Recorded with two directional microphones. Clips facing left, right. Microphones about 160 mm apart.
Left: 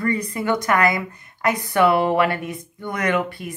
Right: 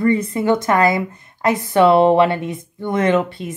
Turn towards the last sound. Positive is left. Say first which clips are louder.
# right 5 dB
turn(degrees=-25)  # may be behind; listen again after turning